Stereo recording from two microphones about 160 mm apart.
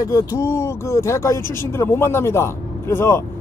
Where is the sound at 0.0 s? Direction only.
20° left (ahead or behind).